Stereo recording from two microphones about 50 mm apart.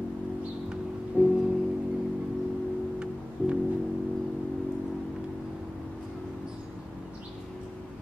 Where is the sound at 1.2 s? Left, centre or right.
Right.